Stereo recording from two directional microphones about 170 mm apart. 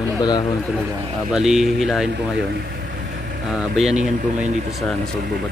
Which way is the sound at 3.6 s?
5° right (ahead or behind).